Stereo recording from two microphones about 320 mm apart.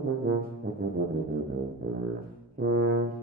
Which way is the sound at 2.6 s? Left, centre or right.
Right.